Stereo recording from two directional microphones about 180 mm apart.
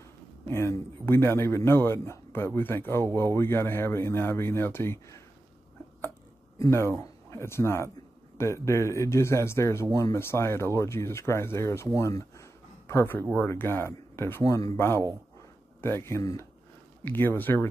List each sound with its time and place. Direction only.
0.5 s a man's voice: 15° left (ahead or behind)
6.6 s a man's voice: 15° left (ahead or behind)
12.0 s a sound: 15° left (ahead or behind)
13.3 s a man's voice: 10° left (ahead or behind)